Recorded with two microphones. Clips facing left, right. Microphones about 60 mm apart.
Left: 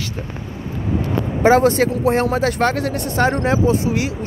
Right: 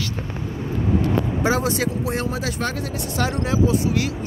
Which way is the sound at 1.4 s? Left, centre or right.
Left.